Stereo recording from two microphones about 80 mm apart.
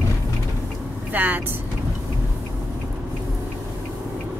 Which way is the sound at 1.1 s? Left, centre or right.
Right.